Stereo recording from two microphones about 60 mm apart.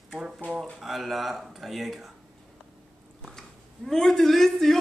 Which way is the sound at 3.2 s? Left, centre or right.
Centre.